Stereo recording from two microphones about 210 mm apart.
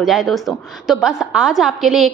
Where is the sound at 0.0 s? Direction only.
Centre (ahead or behind).